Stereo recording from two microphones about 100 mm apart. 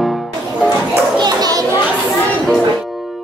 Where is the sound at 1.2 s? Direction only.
40° right (ahead or behind).